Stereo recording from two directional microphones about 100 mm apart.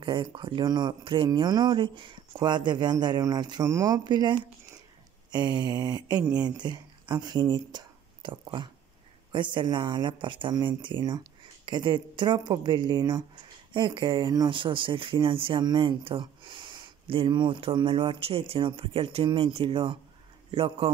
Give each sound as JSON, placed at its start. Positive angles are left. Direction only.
{"t": 0.0, "sound": "speech", "side_deg": -55}
{"t": 3.6, "sound": "speech", "side_deg": -30}